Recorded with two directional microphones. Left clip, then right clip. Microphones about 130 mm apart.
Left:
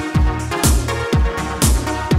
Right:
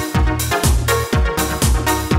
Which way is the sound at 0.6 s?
Centre (ahead or behind).